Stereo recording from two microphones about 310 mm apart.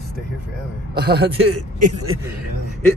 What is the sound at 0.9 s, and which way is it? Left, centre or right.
Speech, right.